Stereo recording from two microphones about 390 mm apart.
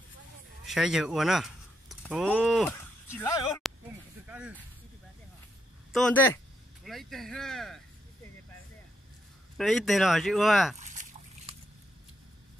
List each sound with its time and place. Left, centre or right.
0.7 s speech: centre
5.9 s speech: centre
9.6 s speech: centre
10.8 s a sound: centre